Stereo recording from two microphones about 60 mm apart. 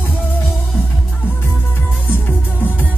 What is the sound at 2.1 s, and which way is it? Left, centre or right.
Music, left.